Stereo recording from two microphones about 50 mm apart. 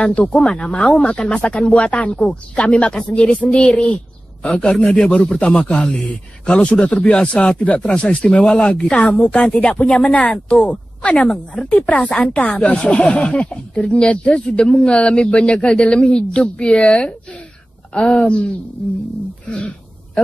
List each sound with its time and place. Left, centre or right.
0.0 s a woman's voice: left
9.0 s speech: left